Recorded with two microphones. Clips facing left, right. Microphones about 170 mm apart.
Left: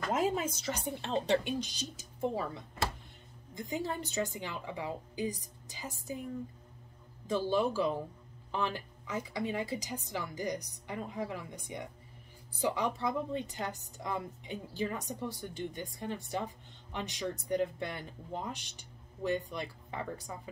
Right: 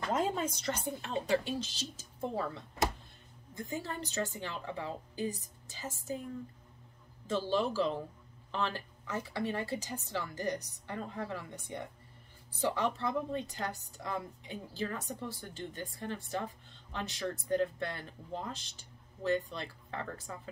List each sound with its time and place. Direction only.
0.1 s a woman's voice: 5° left (ahead or behind)
0.9 s a woman's voice: 25° left (ahead or behind)
7.2 s a woman's voice: 15° left (ahead or behind)